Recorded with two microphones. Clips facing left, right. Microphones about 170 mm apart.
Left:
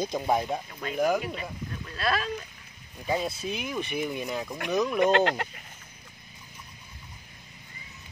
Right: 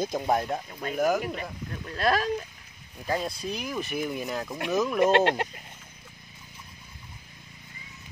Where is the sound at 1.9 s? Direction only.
45° right (ahead or behind).